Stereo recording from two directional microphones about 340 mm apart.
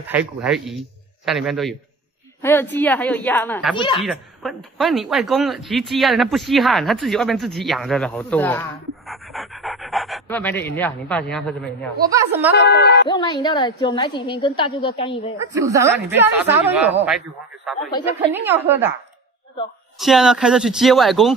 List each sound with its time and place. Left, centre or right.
0.1 s a woman's voice: centre
4.0 s a woman's voice: centre
12.1 s speech: centre
12.5 s music: left
13.1 s a woman's voice: centre
15.5 s speech: centre
18.3 s a woman's voice: centre
20.0 s a woman's voice: centre